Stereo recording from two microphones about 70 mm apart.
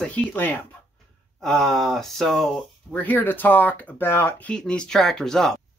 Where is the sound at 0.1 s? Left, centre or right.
Left.